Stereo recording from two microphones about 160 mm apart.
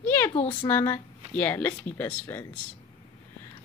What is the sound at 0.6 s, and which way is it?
Speech, 10° left (ahead or behind).